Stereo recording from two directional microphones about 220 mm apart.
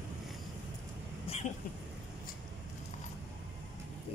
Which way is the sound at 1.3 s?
25° left (ahead or behind).